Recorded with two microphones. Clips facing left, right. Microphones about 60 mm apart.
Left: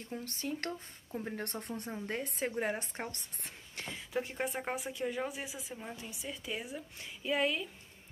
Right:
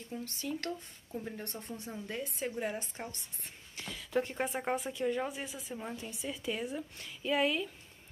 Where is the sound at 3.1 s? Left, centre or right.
Left.